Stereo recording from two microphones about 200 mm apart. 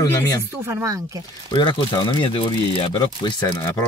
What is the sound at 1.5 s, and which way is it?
Speech, 20° left (ahead or behind).